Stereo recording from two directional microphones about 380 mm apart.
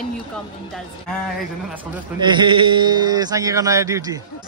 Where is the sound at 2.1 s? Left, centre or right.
Centre.